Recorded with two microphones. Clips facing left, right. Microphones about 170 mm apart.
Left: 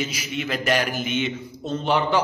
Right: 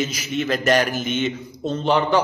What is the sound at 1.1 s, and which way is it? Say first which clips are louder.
Speech: right 2 dB; 45° right (ahead or behind).